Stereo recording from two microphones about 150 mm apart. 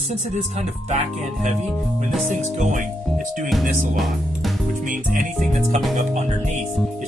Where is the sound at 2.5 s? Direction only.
55° right (ahead or behind).